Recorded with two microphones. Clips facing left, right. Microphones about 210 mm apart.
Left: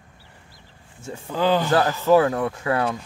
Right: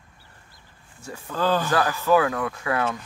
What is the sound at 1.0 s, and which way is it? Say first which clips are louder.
Speech: left 3 dB; 20° left (ahead or behind).